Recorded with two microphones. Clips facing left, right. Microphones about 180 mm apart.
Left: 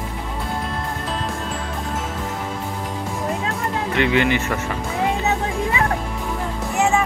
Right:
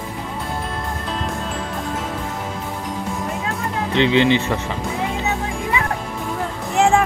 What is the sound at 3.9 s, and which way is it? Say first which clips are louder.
Speech: right 4 dB; 20° right (ahead or behind).